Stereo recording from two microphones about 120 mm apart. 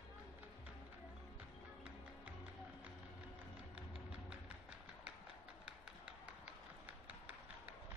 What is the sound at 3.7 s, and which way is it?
Music, 10° right (ahead or behind).